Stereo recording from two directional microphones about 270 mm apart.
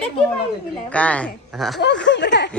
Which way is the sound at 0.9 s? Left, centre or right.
Centre.